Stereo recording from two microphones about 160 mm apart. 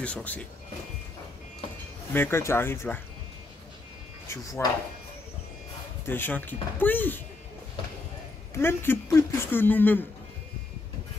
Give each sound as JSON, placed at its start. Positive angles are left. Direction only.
{"t": 0.0, "sound": "speech", "side_deg": 10}
{"t": 2.1, "sound": "speech", "side_deg": 15}
{"t": 4.3, "sound": "speech", "side_deg": 20}
{"t": 6.0, "sound": "speech", "side_deg": 15}
{"t": 8.5, "sound": "speech", "side_deg": 15}